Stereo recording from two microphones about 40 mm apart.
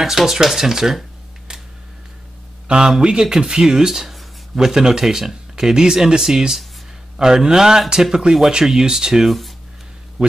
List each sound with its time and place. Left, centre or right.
0.0 s speech: centre
1.5 s a sound: centre
3.0 s speech: centre